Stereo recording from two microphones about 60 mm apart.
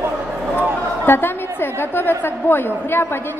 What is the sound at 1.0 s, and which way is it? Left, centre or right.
A woman's voice, left.